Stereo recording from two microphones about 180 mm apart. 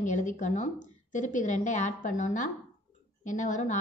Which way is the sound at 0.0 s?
45° left (ahead or behind).